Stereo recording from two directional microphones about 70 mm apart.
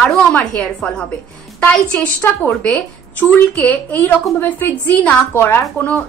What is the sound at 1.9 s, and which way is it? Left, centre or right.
Speech, left.